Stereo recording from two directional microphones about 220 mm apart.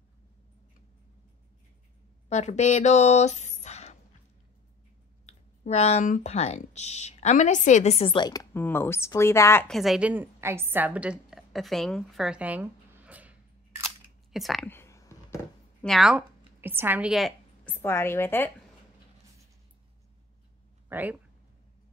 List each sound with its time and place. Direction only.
2.2 s speech: 30° left (ahead or behind)
5.2 s speech: 30° left (ahead or behind); by 15.9 s 15° left (ahead or behind)
15.9 s a woman's voice: centre (ahead or behind)
17.6 s a woman's voice: 10° left (ahead or behind)
20.9 s speech: 10° right (ahead or behind)